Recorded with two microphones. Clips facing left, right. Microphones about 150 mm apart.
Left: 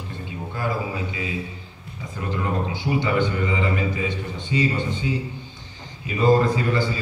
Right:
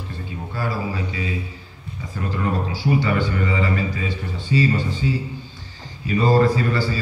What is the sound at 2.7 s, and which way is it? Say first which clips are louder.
A man's voice: right 2 dB; 20° left (ahead or behind).